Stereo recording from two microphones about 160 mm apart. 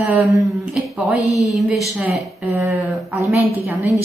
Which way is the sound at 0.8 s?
10° right (ahead or behind).